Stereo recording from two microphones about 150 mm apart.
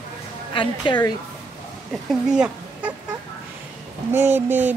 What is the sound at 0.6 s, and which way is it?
Speech, 30° left (ahead or behind).